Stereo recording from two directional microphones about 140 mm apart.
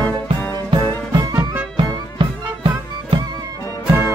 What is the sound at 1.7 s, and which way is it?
Music, 35° right (ahead or behind).